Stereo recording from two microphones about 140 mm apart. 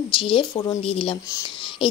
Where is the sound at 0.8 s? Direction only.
40° left (ahead or behind).